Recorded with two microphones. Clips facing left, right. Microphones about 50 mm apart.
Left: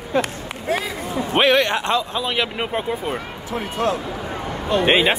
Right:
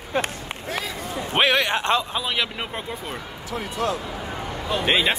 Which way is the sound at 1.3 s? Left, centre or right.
Centre.